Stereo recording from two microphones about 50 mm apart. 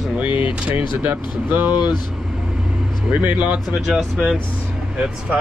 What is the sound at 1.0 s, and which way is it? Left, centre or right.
Speech, right.